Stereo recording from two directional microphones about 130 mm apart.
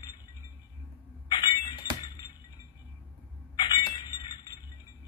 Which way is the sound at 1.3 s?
35° left (ahead or behind).